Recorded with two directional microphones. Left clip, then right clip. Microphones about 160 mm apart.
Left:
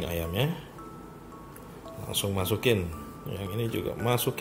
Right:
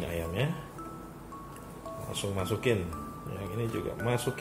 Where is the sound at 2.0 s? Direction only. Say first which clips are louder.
Left 4 dB; 60° left (ahead or behind).